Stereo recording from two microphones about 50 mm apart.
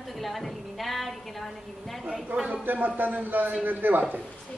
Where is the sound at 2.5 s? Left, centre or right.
Right.